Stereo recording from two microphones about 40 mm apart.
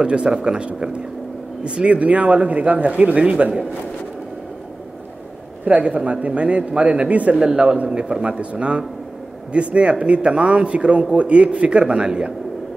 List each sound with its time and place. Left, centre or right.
0.0 s speech: right
5.7 s speech: right
7.3 s speech: right